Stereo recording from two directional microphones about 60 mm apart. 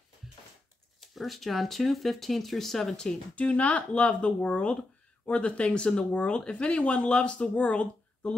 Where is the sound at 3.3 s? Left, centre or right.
Left.